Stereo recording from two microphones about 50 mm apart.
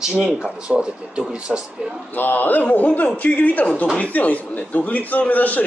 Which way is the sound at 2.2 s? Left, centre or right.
Left.